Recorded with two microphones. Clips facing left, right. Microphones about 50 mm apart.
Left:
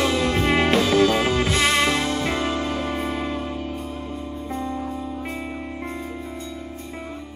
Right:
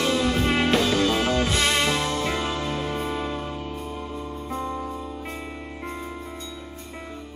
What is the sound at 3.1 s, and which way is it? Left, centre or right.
Music, centre.